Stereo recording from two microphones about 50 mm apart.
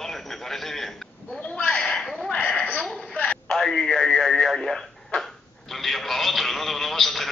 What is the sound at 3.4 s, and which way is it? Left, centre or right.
Radio, centre.